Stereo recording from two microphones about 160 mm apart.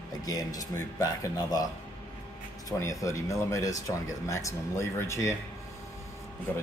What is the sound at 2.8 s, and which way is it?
Speech, 20° left (ahead or behind).